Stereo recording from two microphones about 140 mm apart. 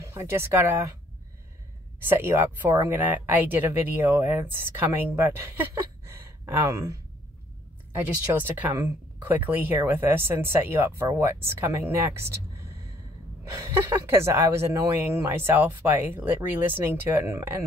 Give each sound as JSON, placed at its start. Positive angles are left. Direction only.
{"t": 0.0, "sound": "speech", "side_deg": -20}
{"t": 2.0, "sound": "speech", "side_deg": -15}
{"t": 13.5, "sound": "speech", "side_deg": -20}